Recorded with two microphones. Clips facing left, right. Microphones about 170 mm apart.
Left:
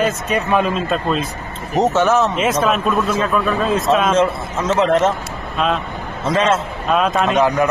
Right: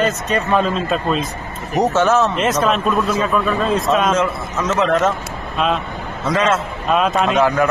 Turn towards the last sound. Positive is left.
turn(degrees=15)  # may be behind; listen again after turning